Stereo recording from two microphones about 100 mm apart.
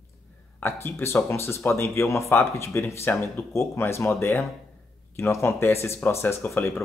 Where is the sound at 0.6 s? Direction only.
25° left (ahead or behind).